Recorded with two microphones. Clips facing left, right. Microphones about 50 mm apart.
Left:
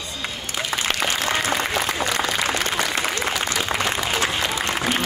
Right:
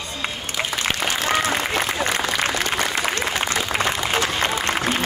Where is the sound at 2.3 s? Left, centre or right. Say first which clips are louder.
Right 1 dB; left.